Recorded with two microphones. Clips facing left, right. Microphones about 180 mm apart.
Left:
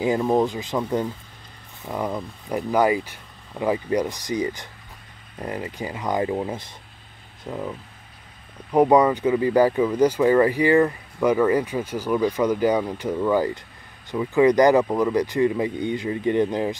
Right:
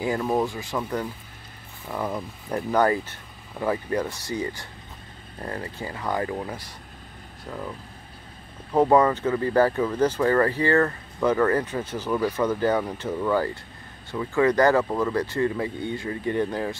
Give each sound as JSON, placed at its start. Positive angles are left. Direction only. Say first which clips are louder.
{"t": 0.0, "sound": "speech", "louder": "left 4 dB", "side_deg": 20}
{"t": 8.7, "sound": "speech", "louder": "left 2 dB", "side_deg": 15}